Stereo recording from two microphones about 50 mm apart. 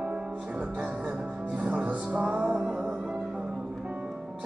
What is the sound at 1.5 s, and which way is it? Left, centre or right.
Music, right.